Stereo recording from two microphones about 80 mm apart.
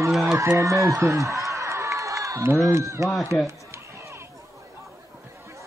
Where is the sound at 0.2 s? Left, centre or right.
Right.